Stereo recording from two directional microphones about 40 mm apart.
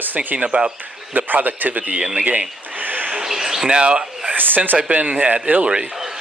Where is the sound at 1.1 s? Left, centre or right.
Right.